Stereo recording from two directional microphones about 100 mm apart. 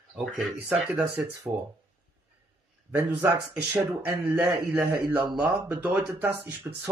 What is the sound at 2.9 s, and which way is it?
Speech, 25° right (ahead or behind).